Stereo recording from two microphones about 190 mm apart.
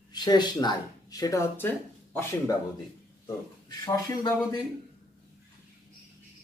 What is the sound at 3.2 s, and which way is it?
Speech, 20° left (ahead or behind).